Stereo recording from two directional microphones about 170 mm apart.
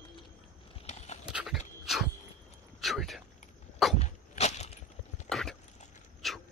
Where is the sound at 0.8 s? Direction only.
40° left (ahead or behind).